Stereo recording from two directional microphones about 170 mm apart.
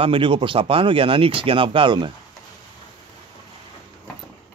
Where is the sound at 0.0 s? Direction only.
30° right (ahead or behind).